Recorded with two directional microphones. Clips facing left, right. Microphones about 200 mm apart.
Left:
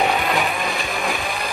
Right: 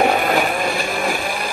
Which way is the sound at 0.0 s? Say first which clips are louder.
Right 4 dB; 50° right (ahead or behind).